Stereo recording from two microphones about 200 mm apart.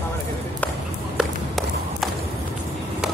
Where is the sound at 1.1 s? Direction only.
Centre (ahead or behind).